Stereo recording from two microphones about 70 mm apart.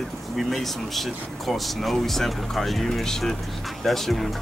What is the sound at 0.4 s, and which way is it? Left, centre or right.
Speech, centre.